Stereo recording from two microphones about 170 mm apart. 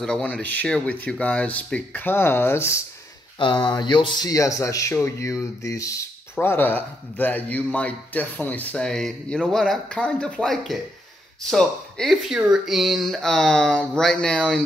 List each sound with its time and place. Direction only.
0.0 s a man's voice: 5° left (ahead or behind)
3.3 s a man's voice: 30° left (ahead or behind); by 14.6 s 5° left (ahead or behind)